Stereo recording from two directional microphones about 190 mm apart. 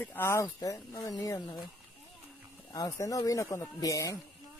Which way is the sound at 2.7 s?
20° left (ahead or behind).